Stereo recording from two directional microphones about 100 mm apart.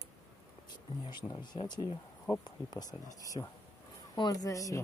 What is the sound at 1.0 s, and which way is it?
Speech, 45° left (ahead or behind).